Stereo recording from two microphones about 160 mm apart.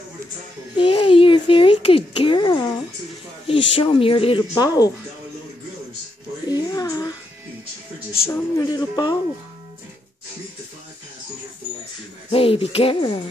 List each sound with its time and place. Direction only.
0.7 s a sound: 30° left (ahead or behind)
3.4 s speech: 30° left (ahead or behind)
6.4 s music: 25° left (ahead or behind)
8.3 s speech: 25° left (ahead or behind)
12.3 s speech: 35° left (ahead or behind)